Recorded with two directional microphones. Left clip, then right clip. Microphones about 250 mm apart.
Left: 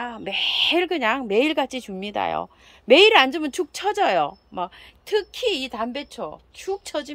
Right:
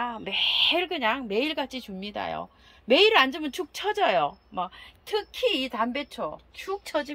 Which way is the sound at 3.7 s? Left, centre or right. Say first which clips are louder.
Left 3 dB; left.